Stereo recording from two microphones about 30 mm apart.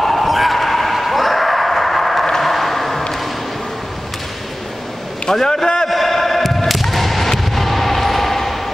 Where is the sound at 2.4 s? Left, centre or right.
Centre.